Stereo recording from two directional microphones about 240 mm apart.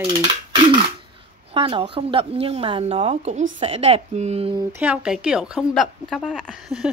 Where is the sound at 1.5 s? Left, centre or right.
Right.